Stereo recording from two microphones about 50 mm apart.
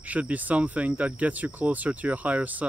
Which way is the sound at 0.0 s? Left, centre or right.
Right.